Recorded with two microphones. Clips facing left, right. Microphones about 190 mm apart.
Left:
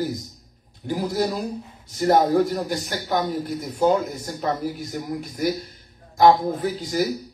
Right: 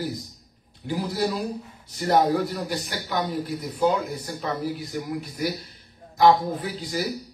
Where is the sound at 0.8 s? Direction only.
45° left (ahead or behind).